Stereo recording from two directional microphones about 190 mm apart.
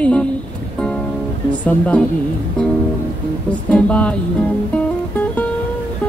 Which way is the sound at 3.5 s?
5° left (ahead or behind).